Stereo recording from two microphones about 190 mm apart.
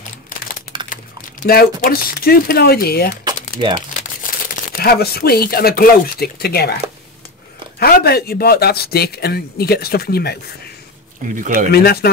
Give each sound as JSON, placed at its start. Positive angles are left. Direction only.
{"t": 1.4, "sound": "speech", "side_deg": 50}
{"t": 3.3, "sound": "typewriter", "side_deg": -25}
{"t": 4.5, "sound": "speech", "side_deg": 50}
{"t": 7.8, "sound": "speech", "side_deg": 55}
{"t": 11.3, "sound": "speech", "side_deg": -45}
{"t": 11.7, "sound": "speech", "side_deg": 55}